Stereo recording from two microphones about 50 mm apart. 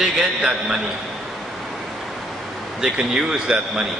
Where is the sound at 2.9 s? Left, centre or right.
Centre.